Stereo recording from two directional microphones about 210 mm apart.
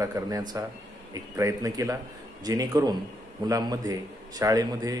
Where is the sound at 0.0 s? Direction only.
15° right (ahead or behind).